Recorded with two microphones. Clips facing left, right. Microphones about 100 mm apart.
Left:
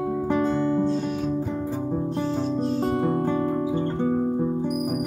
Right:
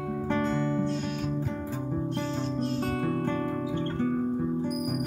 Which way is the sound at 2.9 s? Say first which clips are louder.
Left 6 dB; 20° left (ahead or behind).